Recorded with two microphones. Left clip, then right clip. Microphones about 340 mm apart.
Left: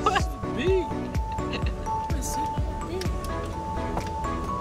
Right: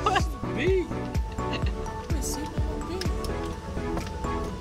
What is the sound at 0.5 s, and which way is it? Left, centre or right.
Music, centre.